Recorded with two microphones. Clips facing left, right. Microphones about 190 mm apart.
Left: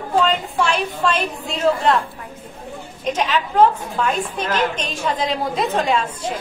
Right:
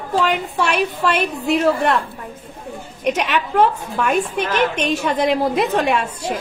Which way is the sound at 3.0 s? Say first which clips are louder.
Right 1 dB; 65° right (ahead or behind).